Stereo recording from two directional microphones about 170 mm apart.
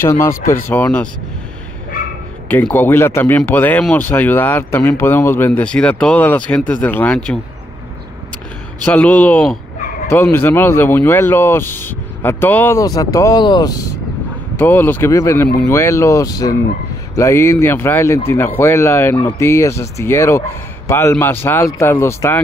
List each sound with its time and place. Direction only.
0.0 s speech: 15° left (ahead or behind)
2.4 s speech: 10° left (ahead or behind)
8.8 s speech: 10° left (ahead or behind); by 13.7 s 25° left (ahead or behind)
14.6 s speech: 10° left (ahead or behind)